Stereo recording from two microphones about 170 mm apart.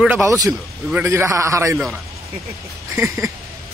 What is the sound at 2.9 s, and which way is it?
Speech, 15° right (ahead or behind).